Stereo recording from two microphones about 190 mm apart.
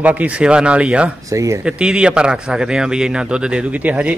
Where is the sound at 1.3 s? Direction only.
15° right (ahead or behind).